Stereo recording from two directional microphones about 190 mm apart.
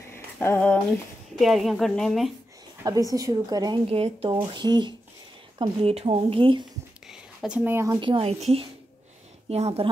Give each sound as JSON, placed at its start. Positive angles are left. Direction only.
{"t": 0.1, "sound": "a sound", "side_deg": 10}
{"t": 1.3, "sound": "a woman's voice", "side_deg": 0}
{"t": 2.8, "sound": "speech", "side_deg": -20}
{"t": 7.1, "sound": "a woman's voice", "side_deg": -5}